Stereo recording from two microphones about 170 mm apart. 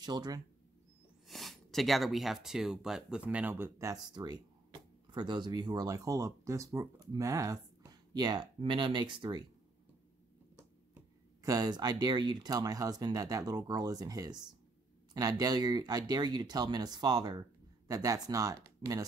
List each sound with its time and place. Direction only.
0.0 s speech: 25° right (ahead or behind)
1.2 s speech: centre (ahead or behind); by 9.4 s 25° right (ahead or behind)
10.5 s speech: 20° right (ahead or behind)